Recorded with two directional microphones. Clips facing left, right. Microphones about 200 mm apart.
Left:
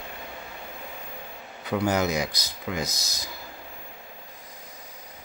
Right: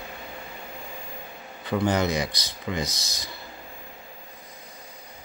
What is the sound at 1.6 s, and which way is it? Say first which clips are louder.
Speech: right 1 dB; 10° left (ahead or behind).